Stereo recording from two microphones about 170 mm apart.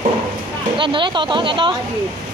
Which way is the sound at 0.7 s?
30° right (ahead or behind).